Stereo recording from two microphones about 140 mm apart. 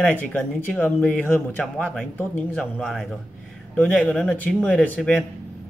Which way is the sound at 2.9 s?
Centre (ahead or behind).